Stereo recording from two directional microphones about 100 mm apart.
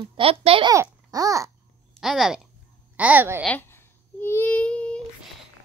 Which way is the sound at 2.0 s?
5° right (ahead or behind).